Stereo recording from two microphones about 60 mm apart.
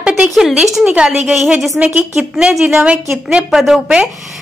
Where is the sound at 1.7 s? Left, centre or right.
Centre.